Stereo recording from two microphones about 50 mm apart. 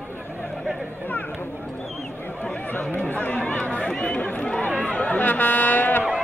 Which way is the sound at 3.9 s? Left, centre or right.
Left.